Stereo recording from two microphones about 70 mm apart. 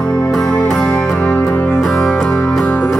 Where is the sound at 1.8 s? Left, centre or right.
Centre.